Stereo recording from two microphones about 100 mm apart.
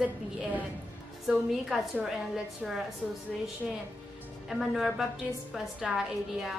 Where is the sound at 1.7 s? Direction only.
5° right (ahead or behind).